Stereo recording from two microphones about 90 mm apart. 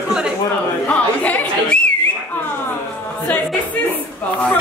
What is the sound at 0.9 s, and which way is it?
Whistling, 15° left (ahead or behind).